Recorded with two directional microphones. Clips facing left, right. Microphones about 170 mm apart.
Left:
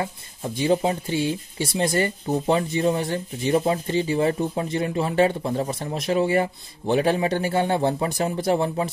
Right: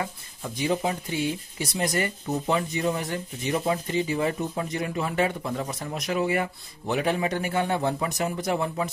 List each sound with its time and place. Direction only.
0.6 s speech: 30° left (ahead or behind)